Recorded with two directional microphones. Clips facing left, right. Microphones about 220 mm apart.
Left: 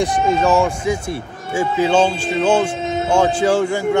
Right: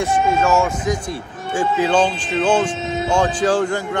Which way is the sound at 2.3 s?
10° left (ahead or behind).